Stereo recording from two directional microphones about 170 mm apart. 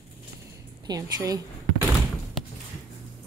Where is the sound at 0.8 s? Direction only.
20° right (ahead or behind).